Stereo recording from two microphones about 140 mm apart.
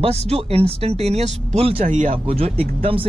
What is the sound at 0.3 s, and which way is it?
Speech, 45° right (ahead or behind).